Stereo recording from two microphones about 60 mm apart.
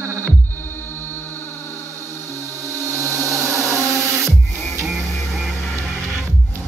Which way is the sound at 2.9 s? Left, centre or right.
Right.